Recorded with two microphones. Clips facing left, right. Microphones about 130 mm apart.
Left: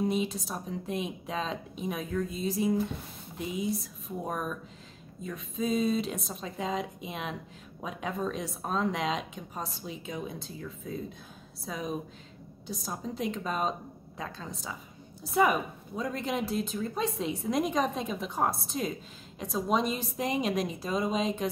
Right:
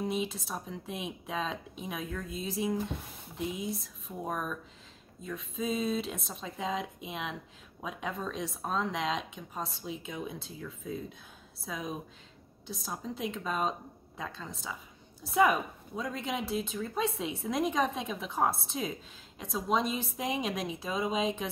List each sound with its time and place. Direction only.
0.0 s speech: centre (ahead or behind)
16.0 s speech: centre (ahead or behind)